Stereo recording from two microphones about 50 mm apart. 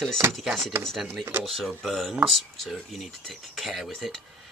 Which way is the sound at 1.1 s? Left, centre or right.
Right.